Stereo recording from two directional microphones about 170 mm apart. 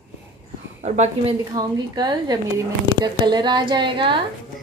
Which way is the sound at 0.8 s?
40° right (ahead or behind).